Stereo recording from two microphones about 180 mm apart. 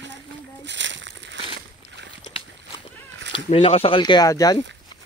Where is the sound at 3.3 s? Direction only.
30° left (ahead or behind).